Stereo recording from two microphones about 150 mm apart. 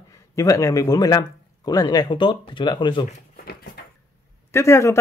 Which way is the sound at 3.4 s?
85° left.